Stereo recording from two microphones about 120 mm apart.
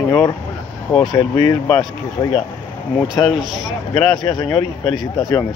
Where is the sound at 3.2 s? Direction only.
25° left (ahead or behind).